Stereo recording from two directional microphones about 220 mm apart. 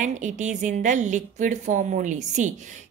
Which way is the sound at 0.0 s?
35° right (ahead or behind).